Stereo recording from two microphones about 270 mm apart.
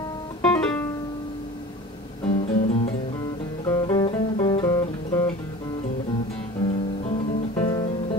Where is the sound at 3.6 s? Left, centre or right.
Centre.